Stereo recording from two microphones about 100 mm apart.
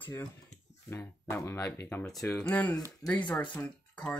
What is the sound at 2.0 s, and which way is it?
Speech, 5° left (ahead or behind).